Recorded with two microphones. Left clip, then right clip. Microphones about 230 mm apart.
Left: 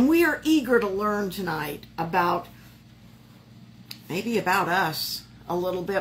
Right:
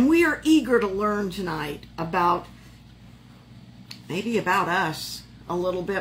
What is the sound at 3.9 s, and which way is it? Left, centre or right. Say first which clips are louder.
Speech: right 1 dB; centre.